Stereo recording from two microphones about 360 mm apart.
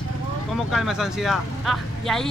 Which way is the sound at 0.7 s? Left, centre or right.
Centre.